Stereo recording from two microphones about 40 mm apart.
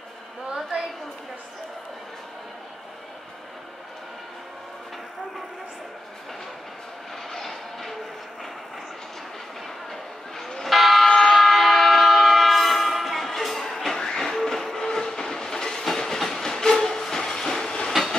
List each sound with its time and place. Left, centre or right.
7.2 s vehicle: centre
9.8 s a sound: centre
11.1 s train: centre